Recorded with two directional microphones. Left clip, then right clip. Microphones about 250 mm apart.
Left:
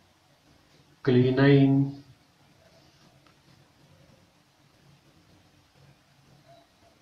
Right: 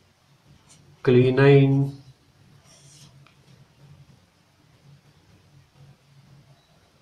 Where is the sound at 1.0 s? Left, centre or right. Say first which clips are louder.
Right 5 dB; right.